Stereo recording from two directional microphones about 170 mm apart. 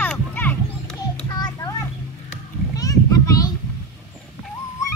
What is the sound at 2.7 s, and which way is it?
Children playing, 20° left (ahead or behind).